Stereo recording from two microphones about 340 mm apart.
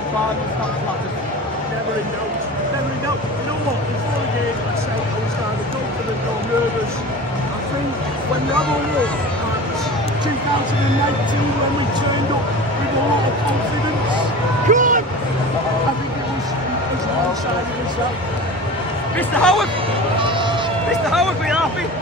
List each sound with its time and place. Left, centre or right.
14.7 s speech: right
19.1 s speech: centre
21.1 s speech: centre